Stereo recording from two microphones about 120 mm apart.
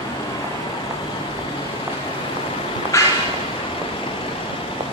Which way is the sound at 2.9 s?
25° left (ahead or behind).